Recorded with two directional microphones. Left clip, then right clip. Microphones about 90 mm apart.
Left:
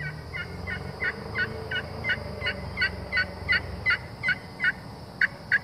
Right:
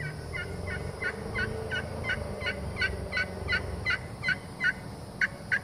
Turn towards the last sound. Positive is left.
turn(degrees=15)  # may be behind; listen again after turning